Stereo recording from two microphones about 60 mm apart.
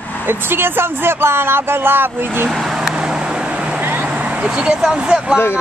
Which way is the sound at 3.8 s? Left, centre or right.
Right.